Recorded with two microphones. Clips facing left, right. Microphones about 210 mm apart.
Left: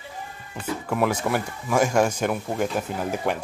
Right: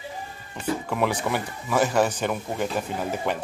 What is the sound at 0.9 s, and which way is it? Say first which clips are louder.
Speech: left 4 dB; 5° left (ahead or behind).